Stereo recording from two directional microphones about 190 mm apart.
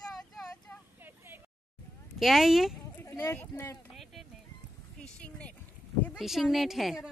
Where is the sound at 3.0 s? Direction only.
15° left (ahead or behind).